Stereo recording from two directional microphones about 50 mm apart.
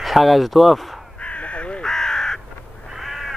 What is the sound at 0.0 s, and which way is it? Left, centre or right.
Speech, centre.